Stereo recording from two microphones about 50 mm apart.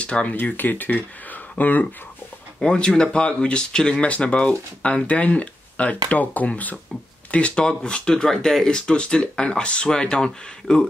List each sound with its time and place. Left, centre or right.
0.0 s speech: left
0.4 s speech: left
2.6 s speech: centre